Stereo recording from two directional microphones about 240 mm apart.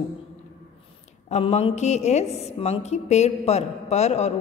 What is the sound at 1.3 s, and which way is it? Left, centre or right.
A woman's voice, left.